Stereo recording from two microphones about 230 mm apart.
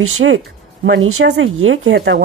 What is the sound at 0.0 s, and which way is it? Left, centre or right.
Speech, right.